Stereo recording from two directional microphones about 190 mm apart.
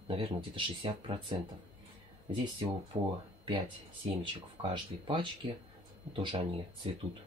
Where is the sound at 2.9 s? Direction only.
25° right (ahead or behind).